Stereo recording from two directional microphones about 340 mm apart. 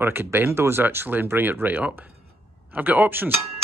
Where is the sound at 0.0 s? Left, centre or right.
Centre.